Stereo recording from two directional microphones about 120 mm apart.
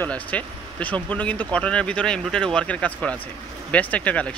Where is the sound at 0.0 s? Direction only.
10° left (ahead or behind).